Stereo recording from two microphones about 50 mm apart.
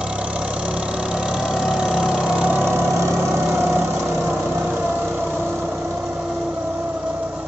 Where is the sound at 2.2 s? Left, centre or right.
Centre.